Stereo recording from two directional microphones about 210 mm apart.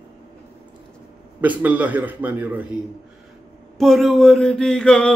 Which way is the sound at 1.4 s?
5° right (ahead or behind).